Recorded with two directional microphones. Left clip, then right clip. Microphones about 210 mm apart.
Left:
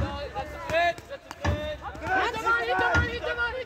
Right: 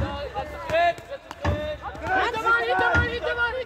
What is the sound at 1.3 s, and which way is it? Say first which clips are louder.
Music: right 3 dB; 25° left (ahead or behind).